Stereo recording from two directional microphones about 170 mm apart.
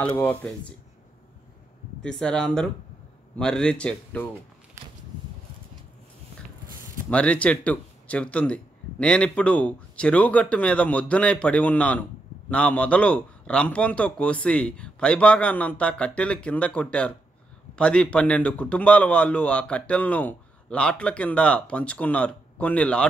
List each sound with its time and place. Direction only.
0.0 s a man's voice: 10° left (ahead or behind)
2.0 s speech: 5° left (ahead or behind)
4.8 s a sound: 15° right (ahead or behind)
7.1 s a man's voice: 5° left (ahead or behind)